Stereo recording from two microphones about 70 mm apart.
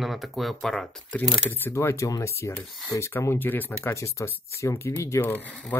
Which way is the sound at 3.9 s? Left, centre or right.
Left.